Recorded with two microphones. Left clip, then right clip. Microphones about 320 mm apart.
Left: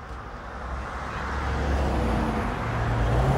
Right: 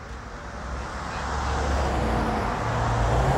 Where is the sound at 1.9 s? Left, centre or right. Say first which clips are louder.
Right 2 dB; right.